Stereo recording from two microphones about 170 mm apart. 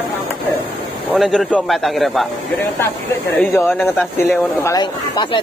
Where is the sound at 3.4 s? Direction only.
10° left (ahead or behind).